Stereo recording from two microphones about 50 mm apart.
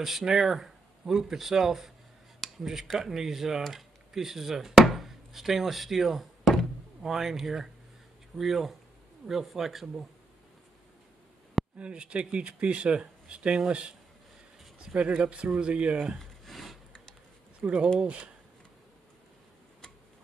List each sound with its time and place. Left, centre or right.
0.0 s speech: centre
11.8 s speech: right
16.1 s a sound: centre
17.6 s speech: right